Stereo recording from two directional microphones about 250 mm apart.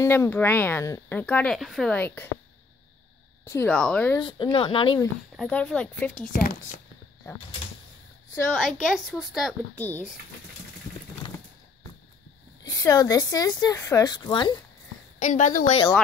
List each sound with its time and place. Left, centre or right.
0.0 s speech: centre
3.4 s speech: centre
4.2 s speech: centre
5.3 s speech: centre
6.2 s a woman's voice: left
8.4 s speech: centre
12.6 s speech: centre
15.1 s a woman's voice: left